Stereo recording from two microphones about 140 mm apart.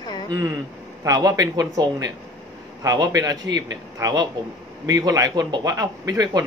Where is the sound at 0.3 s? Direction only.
20° right (ahead or behind).